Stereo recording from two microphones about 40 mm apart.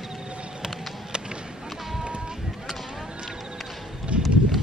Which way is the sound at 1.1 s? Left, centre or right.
Right.